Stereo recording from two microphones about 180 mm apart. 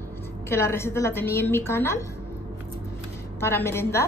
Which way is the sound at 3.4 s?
15° left (ahead or behind).